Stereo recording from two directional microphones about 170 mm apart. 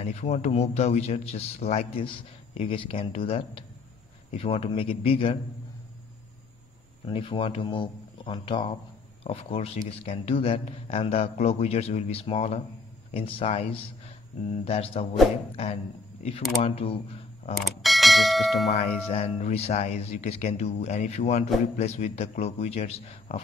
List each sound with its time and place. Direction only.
0.0 s speech: 40° left (ahead or behind)
7.1 s speech: 30° left (ahead or behind)
17.6 s speech: centre (ahead or behind)
18.7 s speech: 35° left (ahead or behind)